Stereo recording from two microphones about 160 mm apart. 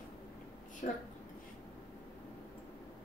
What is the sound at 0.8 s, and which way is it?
Speech, 55° left (ahead or behind).